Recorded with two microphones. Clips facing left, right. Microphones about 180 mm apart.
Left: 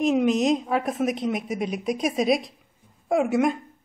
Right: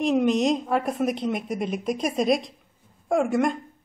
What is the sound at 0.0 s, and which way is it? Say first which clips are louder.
A woman's voice: even; centre (ahead or behind).